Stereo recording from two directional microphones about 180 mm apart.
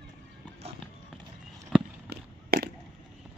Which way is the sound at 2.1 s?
60° right (ahead or behind).